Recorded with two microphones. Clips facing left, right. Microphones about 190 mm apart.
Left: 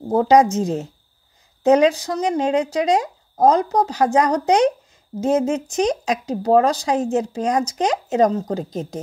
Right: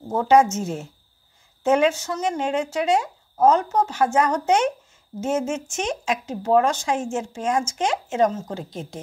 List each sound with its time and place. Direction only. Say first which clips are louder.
0.1 s speech: left 3 dB; 35° left (ahead or behind)